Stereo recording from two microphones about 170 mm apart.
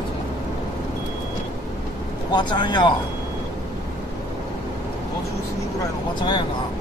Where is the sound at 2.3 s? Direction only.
25° left (ahead or behind).